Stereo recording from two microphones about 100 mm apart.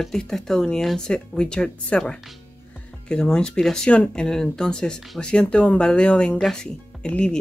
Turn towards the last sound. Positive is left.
turn(degrees=10)  # may be behind; listen again after turning